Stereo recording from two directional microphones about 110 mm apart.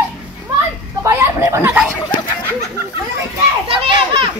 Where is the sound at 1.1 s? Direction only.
25° right (ahead or behind).